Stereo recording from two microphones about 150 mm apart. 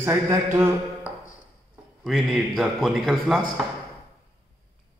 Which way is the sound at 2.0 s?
Centre (ahead or behind).